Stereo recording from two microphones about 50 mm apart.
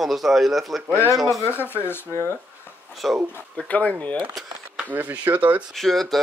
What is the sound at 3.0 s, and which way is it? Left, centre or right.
Speech, centre.